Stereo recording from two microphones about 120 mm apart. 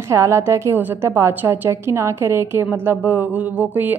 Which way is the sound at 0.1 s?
25° right (ahead or behind).